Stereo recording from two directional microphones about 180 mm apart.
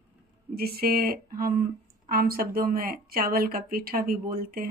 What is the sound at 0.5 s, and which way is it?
Speech, 60° right (ahead or behind).